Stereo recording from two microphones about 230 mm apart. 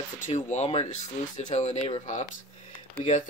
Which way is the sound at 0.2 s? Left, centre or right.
Left.